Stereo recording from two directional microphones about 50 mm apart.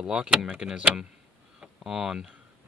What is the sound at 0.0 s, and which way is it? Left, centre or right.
Speech, centre.